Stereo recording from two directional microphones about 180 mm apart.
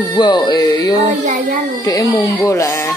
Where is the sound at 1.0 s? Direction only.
45° right (ahead or behind).